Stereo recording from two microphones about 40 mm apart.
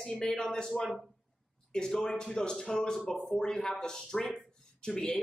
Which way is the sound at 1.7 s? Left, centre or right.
Centre.